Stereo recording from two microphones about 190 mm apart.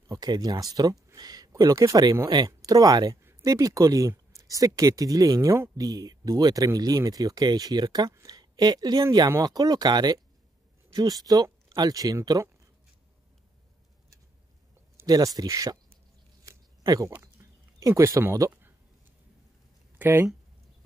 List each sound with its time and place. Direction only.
0.1 s speech: 20° right (ahead or behind)
15.0 s speech: 20° right (ahead or behind)
16.4 s a sound: 20° right (ahead or behind)
20.0 s speech: 10° right (ahead or behind)